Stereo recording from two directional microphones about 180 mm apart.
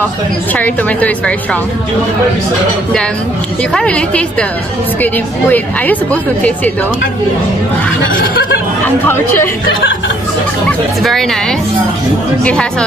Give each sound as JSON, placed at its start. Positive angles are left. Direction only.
{"t": 0.5, "sound": "a woman's voice", "side_deg": 10}
{"t": 3.7, "sound": "a woman's voice", "side_deg": 5}
{"t": 9.0, "sound": "a woman's voice", "side_deg": 10}
{"t": 11.0, "sound": "a woman's voice", "side_deg": 0}